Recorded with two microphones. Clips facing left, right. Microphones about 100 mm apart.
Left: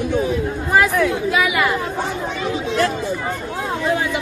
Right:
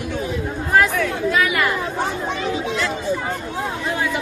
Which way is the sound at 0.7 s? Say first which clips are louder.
Left 2 dB; 5° left (ahead or behind).